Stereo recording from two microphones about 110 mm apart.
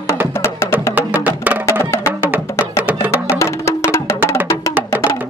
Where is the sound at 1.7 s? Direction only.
25° left (ahead or behind).